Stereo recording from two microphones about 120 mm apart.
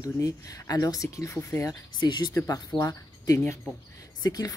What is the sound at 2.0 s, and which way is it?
Speech, 40° left (ahead or behind).